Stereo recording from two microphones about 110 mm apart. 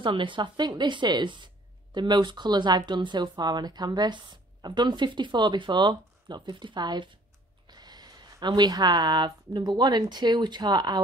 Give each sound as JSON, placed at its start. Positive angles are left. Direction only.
{"t": 0.0, "sound": "speech", "side_deg": -50}